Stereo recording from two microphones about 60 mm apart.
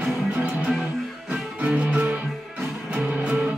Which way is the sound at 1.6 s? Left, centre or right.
Right.